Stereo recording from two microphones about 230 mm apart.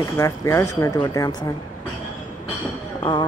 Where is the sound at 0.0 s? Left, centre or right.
Centre.